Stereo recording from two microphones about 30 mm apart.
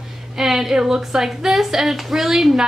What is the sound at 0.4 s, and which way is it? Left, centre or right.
A woman's voice, centre.